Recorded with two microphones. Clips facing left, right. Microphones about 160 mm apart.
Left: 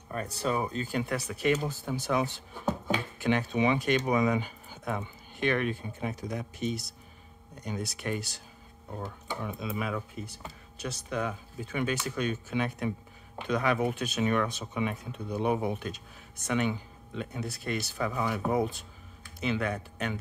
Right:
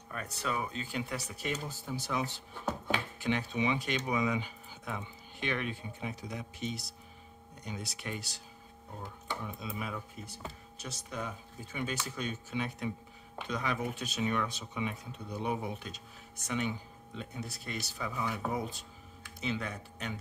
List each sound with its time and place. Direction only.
0.1 s speech: 35° left (ahead or behind); by 8.4 s 50° left (ahead or behind)
9.0 s speech: 70° left (ahead or behind)